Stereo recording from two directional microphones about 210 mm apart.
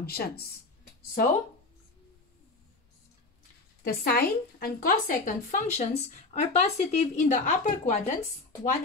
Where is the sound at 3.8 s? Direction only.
45° left (ahead or behind).